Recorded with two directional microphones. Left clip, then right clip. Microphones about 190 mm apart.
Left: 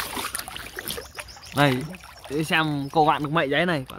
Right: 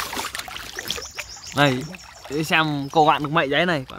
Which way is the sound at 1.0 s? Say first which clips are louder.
Right 5 dB; 5° left (ahead or behind).